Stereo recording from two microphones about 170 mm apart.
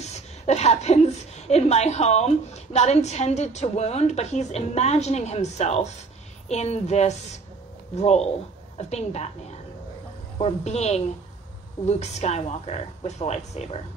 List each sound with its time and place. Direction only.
0.5 s a woman's voice: 40° left (ahead or behind)
10.4 s a woman's voice: 40° left (ahead or behind)